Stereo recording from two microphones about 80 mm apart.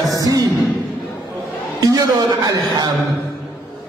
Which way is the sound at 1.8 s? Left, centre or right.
Right.